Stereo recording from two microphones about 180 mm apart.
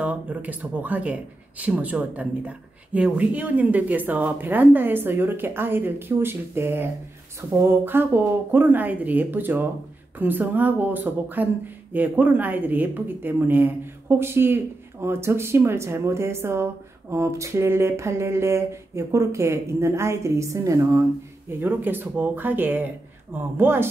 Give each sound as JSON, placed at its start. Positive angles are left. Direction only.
{"t": 0.0, "sound": "speech", "side_deg": -5}